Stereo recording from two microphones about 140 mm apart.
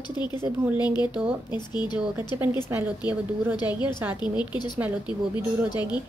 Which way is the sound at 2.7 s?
15° right (ahead or behind).